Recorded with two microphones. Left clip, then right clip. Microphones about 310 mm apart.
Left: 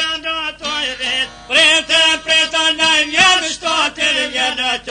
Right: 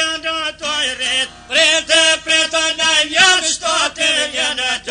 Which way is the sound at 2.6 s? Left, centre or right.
Left.